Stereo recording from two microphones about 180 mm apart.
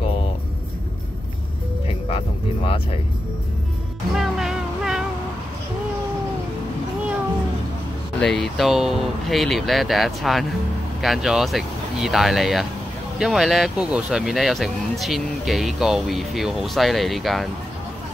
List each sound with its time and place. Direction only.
2.0 s music: 30° left (ahead or behind)
4.1 s music: centre (ahead or behind)
8.2 s speech: centre (ahead or behind)